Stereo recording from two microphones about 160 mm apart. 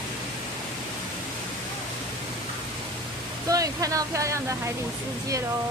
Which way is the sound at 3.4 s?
20° right (ahead or behind).